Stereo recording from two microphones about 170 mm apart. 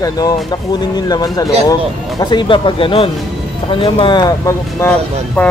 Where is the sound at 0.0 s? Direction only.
25° left (ahead or behind).